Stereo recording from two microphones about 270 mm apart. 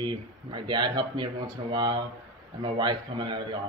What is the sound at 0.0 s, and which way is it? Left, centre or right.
Speech, centre.